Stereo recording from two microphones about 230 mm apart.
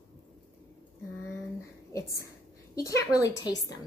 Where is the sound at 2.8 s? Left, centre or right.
Centre.